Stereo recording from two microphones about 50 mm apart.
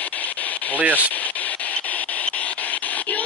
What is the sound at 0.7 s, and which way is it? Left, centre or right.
Speech, right.